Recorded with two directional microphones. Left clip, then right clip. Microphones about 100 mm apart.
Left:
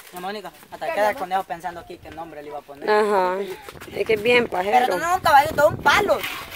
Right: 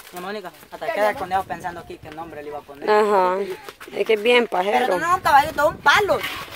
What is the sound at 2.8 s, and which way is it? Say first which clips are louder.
Speech: right 2 dB; centre (ahead or behind).